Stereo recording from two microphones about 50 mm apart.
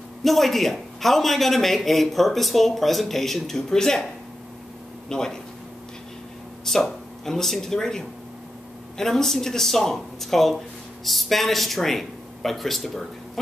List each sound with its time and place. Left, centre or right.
0.2 s a man's voice: centre
5.1 s speech: centre
6.6 s a man's voice: centre